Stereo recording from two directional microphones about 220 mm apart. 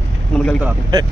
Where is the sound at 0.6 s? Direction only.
15° right (ahead or behind).